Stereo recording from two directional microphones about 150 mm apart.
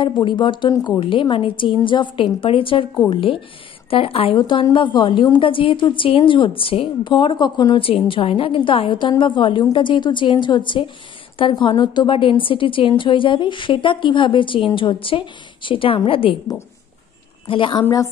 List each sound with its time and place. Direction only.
0.0 s a woman's voice: 35° left (ahead or behind)
17.5 s a woman's voice: 35° left (ahead or behind)